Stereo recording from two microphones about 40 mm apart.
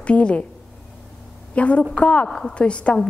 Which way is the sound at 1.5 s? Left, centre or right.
Left.